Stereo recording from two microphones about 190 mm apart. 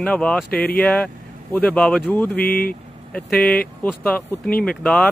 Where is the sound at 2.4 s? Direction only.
50° left (ahead or behind).